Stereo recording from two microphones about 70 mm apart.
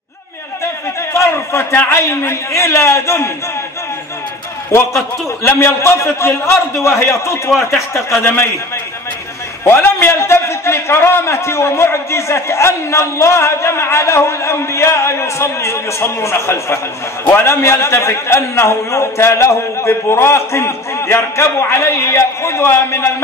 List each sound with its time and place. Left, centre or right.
1.1 s a man's voice: left
5.6 s a man's voice: left
9.7 s a man's voice: left